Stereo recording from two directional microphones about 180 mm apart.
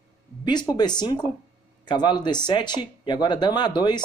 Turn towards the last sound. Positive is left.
turn(degrees=25)  # may be behind; listen again after turning